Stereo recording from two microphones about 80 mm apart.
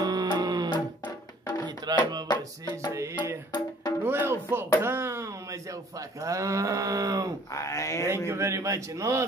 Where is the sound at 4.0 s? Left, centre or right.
Right.